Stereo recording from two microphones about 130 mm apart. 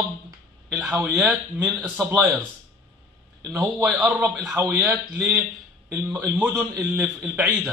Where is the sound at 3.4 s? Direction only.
20° right (ahead or behind).